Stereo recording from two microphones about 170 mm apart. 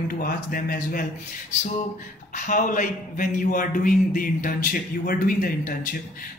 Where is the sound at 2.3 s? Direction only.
50° left (ahead or behind).